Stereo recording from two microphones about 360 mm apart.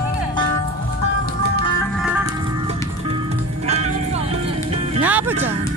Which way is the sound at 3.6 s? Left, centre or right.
Centre.